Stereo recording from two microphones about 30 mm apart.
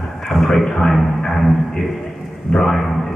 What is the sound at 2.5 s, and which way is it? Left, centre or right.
Speech, left.